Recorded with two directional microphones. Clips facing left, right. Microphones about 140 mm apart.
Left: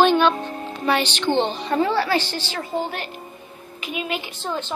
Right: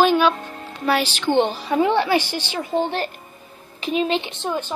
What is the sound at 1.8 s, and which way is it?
Speech, 20° right (ahead or behind).